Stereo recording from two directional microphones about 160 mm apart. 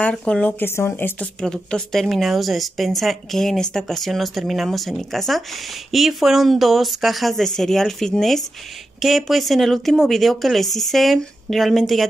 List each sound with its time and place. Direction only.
0.0 s speech: 5° left (ahead or behind)